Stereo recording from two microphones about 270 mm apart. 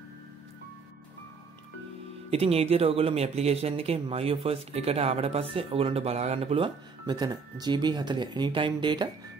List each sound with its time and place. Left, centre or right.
2.3 s speech: right